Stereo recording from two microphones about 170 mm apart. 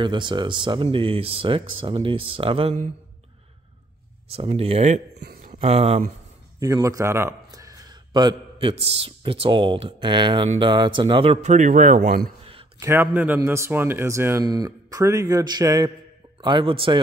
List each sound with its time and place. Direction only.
0.0 s speech: 25° right (ahead or behind)
4.3 s speech: 35° right (ahead or behind)
6.6 s a man's voice: 20° right (ahead or behind)
11.4 s speech: 45° right (ahead or behind)
12.7 s a man's voice: 15° right (ahead or behind); by 17.0 s 30° right (ahead or behind)